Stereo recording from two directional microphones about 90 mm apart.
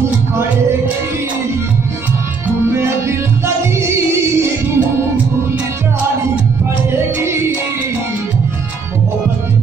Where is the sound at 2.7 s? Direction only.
30° right (ahead or behind).